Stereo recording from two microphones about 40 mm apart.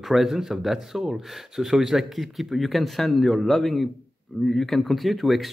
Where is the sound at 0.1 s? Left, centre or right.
Centre.